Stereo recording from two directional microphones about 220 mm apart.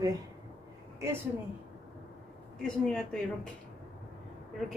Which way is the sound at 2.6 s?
Centre (ahead or behind).